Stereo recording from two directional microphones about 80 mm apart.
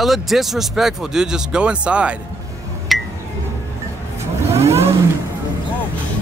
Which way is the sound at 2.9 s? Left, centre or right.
Centre.